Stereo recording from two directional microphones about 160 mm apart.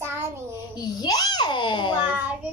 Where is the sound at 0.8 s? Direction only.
25° left (ahead or behind).